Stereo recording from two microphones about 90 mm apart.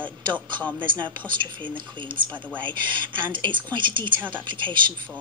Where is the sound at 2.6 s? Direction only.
60° right (ahead or behind).